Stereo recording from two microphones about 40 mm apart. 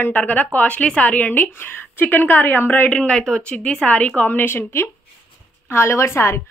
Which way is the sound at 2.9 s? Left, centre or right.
Left.